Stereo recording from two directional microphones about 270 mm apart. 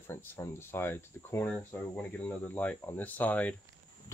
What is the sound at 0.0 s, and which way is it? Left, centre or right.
Speech, centre.